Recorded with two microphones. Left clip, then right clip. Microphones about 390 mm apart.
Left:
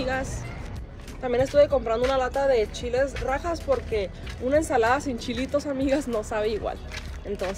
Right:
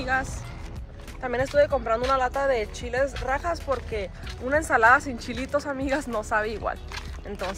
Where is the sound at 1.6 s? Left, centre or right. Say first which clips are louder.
Left 1 dB; centre.